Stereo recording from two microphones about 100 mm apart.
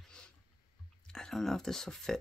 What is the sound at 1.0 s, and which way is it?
Speech, 5° left (ahead or behind).